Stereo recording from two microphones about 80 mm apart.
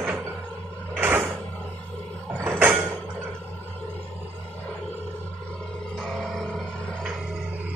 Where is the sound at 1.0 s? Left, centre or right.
Right.